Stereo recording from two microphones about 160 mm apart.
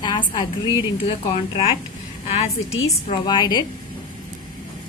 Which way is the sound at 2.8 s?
25° left (ahead or behind).